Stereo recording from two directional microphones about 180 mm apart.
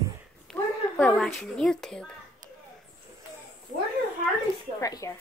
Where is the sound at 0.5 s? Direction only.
5° left (ahead or behind).